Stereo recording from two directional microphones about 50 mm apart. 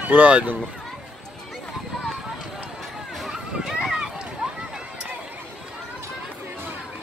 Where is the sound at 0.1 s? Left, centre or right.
Right.